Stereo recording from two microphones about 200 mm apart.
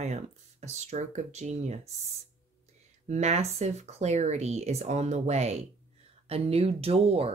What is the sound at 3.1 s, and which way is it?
Speech, 35° right (ahead or behind).